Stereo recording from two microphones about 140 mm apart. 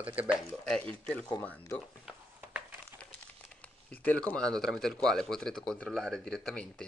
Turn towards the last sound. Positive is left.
turn(degrees=5)  # may be behind; listen again after turning